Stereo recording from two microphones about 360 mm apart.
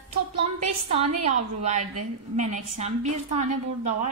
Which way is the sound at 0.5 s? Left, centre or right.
Centre.